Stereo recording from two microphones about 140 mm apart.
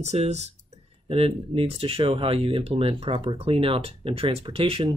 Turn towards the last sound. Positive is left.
turn(degrees=-45)  # may be behind; listen again after turning